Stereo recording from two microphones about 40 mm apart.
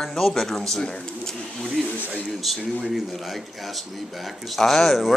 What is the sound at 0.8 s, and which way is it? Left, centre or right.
Speech, left.